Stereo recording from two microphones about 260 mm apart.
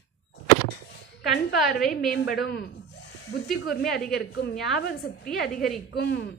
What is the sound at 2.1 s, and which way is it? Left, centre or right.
Speech, left.